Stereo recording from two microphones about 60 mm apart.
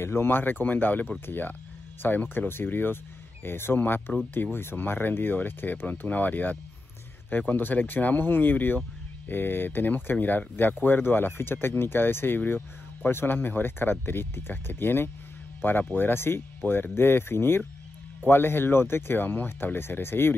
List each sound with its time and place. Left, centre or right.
0.0 s speech: left